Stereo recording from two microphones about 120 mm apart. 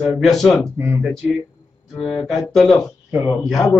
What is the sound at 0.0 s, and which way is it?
Speech, centre (ahead or behind).